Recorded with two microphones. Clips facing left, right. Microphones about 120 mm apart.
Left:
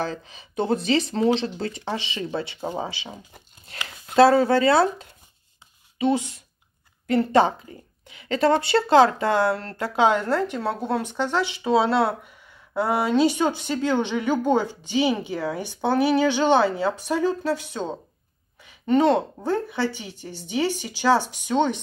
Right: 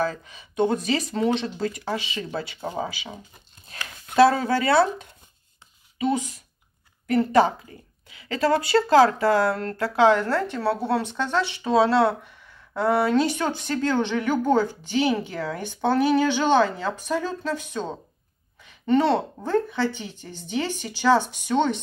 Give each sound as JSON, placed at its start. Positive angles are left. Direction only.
{"t": 0.0, "sound": "speech", "side_deg": 30}